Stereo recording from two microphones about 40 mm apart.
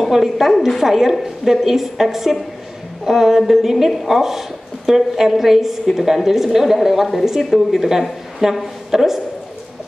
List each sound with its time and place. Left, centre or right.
0.0 s a woman's voice: centre